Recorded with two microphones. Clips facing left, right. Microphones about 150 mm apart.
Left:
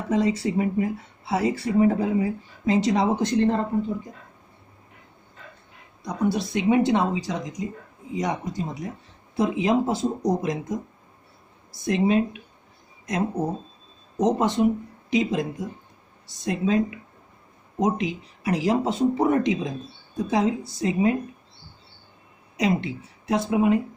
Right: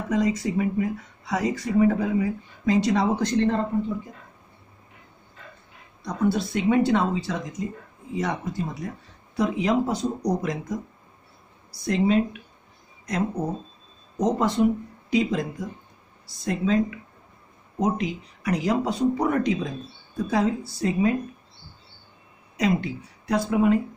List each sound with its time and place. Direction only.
0.1 s speech: 30° left (ahead or behind)
6.0 s speech: 20° left (ahead or behind)
11.8 s speech: 25° left (ahead or behind)
22.6 s speech: 25° left (ahead or behind)